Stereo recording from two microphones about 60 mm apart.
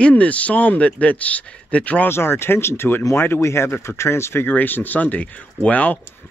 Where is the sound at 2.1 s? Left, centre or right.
Left.